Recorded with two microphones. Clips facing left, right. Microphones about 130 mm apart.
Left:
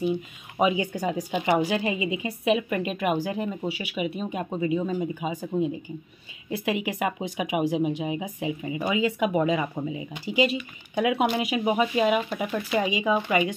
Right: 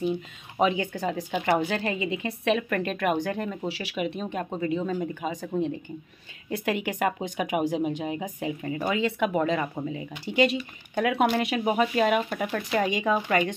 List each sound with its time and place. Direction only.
0.6 s a woman's voice: 10° left (ahead or behind)
6.5 s a woman's voice: 5° left (ahead or behind)